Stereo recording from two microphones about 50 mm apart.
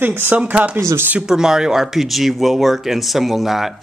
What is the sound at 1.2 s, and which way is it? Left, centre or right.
A man's voice, centre.